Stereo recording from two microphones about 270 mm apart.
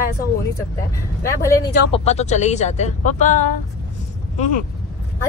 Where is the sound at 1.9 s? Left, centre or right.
Left.